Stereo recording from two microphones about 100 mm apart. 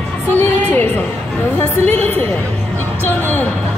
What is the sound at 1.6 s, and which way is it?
Speech, 20° left (ahead or behind).